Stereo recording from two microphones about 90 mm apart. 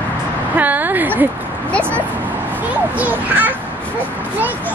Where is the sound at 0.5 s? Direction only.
20° right (ahead or behind).